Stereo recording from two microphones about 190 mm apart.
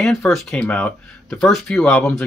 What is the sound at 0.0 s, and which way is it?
Speech, centre (ahead or behind).